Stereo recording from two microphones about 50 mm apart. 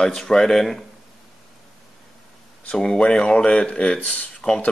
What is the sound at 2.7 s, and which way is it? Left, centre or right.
Speech, centre.